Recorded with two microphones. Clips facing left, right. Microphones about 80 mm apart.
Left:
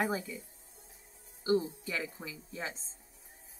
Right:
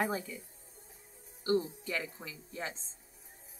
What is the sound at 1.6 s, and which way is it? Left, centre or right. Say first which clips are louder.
Speech: even; centre.